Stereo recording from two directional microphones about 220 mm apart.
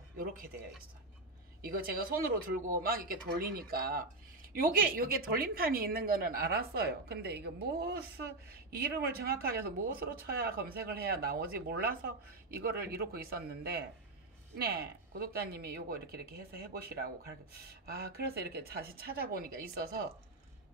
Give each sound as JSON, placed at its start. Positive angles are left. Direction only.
{"t": 1.6, "sound": "speech", "side_deg": -40}